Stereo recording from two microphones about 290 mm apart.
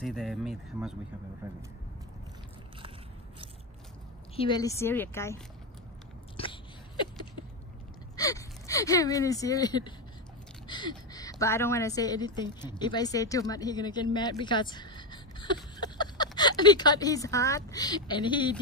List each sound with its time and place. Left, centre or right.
0.0 s speech: centre
4.4 s a woman's voice: centre
6.3 s biting: centre
8.2 s a woman's voice: centre